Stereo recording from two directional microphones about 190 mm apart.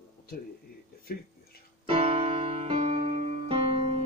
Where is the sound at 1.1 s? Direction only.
50° left (ahead or behind).